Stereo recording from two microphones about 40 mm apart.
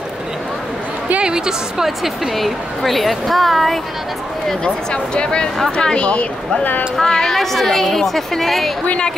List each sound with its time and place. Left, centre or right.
1.2 s a woman's voice: centre
1.9 s a woman's voice: centre
4.6 s speech: left
7.0 s a woman's voice: centre